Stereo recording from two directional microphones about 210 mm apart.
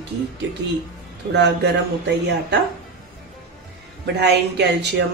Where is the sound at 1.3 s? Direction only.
55° right (ahead or behind).